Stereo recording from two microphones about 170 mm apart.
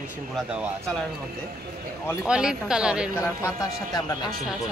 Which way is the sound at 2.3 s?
5° right (ahead or behind).